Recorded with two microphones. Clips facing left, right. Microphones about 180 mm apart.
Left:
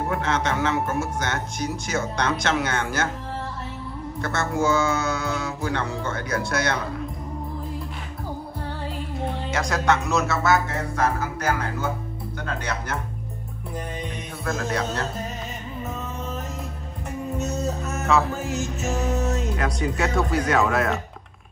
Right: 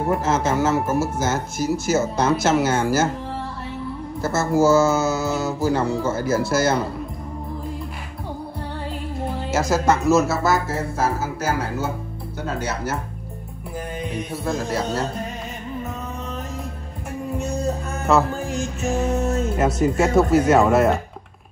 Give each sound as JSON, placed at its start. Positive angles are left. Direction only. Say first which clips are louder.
{"t": 0.1, "sound": "speech", "louder": "right 6 dB", "side_deg": -5}
{"t": 4.2, "sound": "speech", "louder": "right 6 dB", "side_deg": -5}
{"t": 9.2, "sound": "speech", "louder": "right 4 dB", "side_deg": -5}
{"t": 14.5, "sound": "speech", "louder": "right 2 dB", "side_deg": 0}
{"t": 17.4, "sound": "music", "louder": "right 3 dB", "side_deg": 5}
{"t": 18.4, "sound": "music", "louder": "right 2 dB", "side_deg": 20}
{"t": 18.8, "sound": "speech", "louder": "right 5 dB", "side_deg": 0}